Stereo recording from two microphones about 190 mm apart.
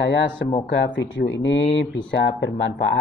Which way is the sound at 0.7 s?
70° left (ahead or behind).